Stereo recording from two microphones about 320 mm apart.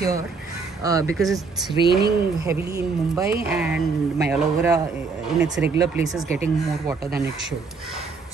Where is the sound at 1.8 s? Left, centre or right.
Right.